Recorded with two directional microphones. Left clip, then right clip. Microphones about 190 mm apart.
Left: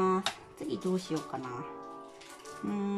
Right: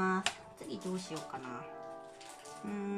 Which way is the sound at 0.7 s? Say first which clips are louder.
Left 8 dB; 20° left (ahead or behind).